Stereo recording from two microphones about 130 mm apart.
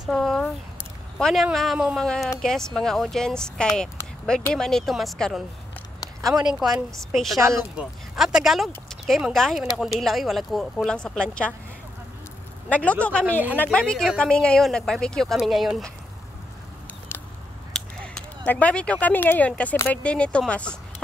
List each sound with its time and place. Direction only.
0.0 s a sound: centre (ahead or behind)
1.1 s speech: centre (ahead or behind)
6.2 s speech: 30° right (ahead or behind)
6.6 s speech: 5° right (ahead or behind)
7.3 s speech: 25° right (ahead or behind)
8.2 s speech: 5° right (ahead or behind)
12.6 s speech: 10° left (ahead or behind)
17.1 s a sound: 15° left (ahead or behind)
17.7 s speech: 5° left (ahead or behind)